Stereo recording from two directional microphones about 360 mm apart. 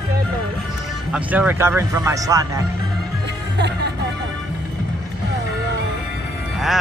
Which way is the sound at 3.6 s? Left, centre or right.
Right.